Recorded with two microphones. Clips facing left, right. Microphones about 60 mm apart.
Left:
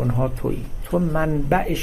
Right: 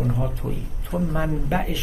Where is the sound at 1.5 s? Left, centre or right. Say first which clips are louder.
Left 6 dB; left.